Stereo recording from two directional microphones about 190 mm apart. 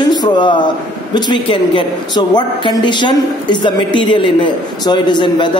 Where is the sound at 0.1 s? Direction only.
25° left (ahead or behind).